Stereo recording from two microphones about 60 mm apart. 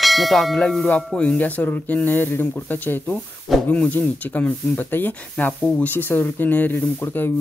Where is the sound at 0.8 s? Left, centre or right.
Left.